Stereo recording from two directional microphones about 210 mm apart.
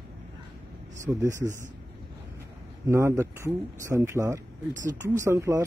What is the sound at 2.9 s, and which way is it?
Speech, 10° right (ahead or behind).